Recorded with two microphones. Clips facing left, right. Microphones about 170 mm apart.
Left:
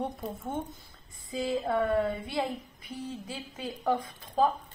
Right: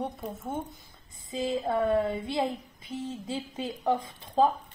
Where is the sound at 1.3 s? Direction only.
20° right (ahead or behind).